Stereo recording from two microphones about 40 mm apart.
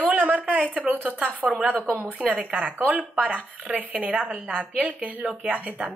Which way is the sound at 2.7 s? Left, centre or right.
Right.